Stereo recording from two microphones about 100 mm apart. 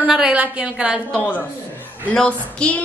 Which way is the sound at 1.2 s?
15° left (ahead or behind).